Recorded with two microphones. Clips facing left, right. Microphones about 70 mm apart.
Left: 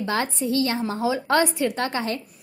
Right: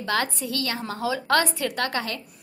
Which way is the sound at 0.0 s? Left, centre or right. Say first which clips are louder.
Left 1 dB; left.